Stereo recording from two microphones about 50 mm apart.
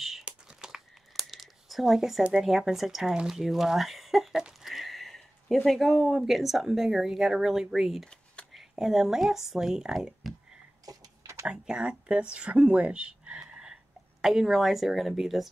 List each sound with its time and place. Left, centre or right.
0.2 s a sound: centre
1.1 s crumpling: centre
2.3 s speech: centre
3.3 s a sound: centre
5.7 s speech: centre
11.4 s speech: centre